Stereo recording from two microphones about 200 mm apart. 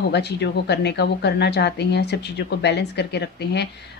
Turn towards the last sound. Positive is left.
turn(degrees=55)  # may be behind; listen again after turning